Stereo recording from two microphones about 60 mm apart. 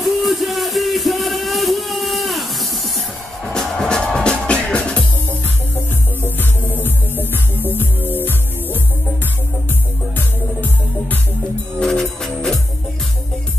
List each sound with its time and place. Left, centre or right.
0.0 s a sound: centre
3.4 s music: centre
6.3 s music: left
10.1 s music: left
11.8 s music: centre